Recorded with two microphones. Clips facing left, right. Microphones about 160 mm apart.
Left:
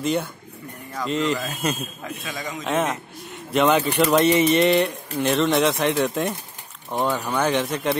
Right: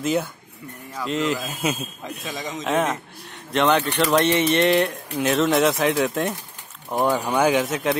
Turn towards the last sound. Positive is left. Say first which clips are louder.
# right 2 dB
turn(degrees=0)  # may be behind; listen again after turning